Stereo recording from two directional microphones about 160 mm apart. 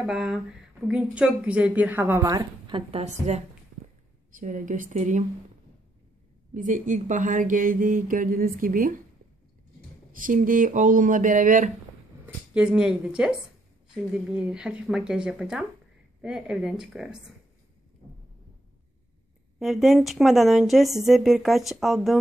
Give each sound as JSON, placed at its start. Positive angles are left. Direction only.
{"t": 0.0, "sound": "a woman's voice", "side_deg": -5}
{"t": 2.2, "sound": "a woman's voice", "side_deg": -25}
{"t": 2.9, "sound": "a woman's voice", "side_deg": -45}
{"t": 6.5, "sound": "speech", "side_deg": -55}
{"t": 10.1, "sound": "speech", "side_deg": -55}
{"t": 12.5, "sound": "a woman's voice", "side_deg": -5}
{"t": 19.6, "sound": "a woman's voice", "side_deg": 0}